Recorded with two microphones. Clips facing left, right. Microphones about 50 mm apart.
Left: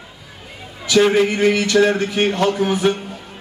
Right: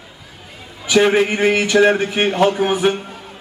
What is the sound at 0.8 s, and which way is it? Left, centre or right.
Speech, centre.